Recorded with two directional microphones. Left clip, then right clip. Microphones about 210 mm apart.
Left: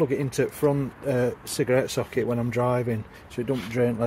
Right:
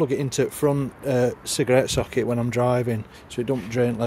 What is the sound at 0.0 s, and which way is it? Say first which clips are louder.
Speech: right 2 dB; 25° right (ahead or behind).